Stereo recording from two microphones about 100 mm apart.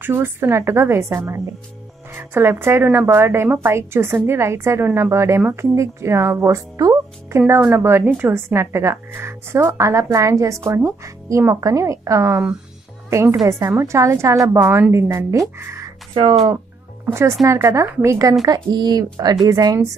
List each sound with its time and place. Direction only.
0.0 s a woman's voice: 20° right (ahead or behind)
5.8 s a woman's voice: 30° right (ahead or behind)
15.6 s music: 30° right (ahead or behind)
17.0 s a woman's voice: 30° right (ahead or behind)
18.4 s speech: 45° right (ahead or behind)